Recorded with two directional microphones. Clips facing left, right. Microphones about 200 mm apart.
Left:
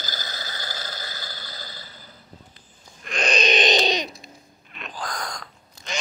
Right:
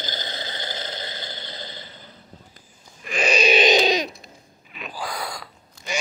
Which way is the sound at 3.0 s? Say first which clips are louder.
Right 3 dB; 5° right (ahead or behind).